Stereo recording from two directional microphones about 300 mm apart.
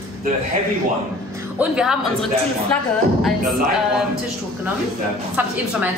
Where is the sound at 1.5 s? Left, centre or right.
Centre.